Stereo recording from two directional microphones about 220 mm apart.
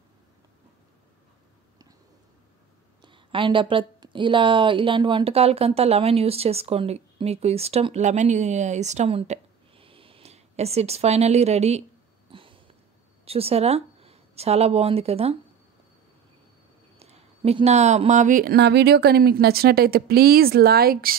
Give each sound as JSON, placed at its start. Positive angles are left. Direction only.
{"t": 3.0, "sound": "speech", "side_deg": -20}
{"t": 12.3, "sound": "a sound", "side_deg": -25}
{"t": 13.2, "sound": "speech", "side_deg": -25}
{"t": 17.0, "sound": "speech", "side_deg": -30}